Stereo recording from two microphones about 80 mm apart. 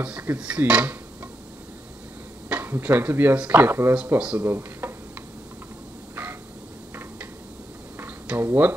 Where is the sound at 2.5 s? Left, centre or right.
Right.